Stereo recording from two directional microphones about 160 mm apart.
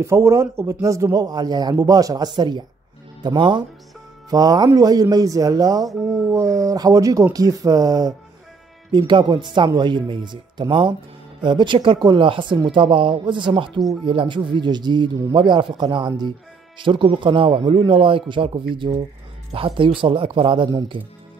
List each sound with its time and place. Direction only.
0.0 s a man's voice: 20° right (ahead or behind)